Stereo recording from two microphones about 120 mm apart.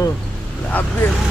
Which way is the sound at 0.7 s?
15° left (ahead or behind).